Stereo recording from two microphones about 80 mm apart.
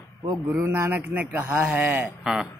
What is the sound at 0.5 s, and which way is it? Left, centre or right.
Speech, right.